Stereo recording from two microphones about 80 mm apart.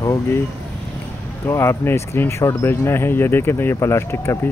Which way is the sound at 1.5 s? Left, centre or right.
Left.